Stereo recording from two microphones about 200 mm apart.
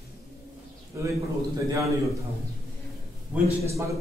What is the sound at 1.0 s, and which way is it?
Speech, 15° right (ahead or behind).